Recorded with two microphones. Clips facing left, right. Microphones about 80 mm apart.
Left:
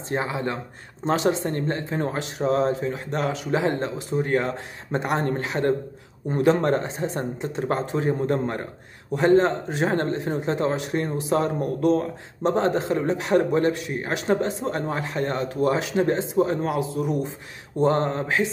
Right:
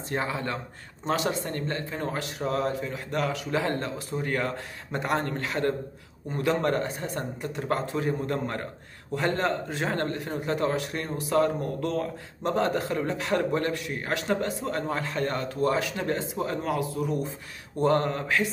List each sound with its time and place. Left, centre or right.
0.1 s a man's voice: left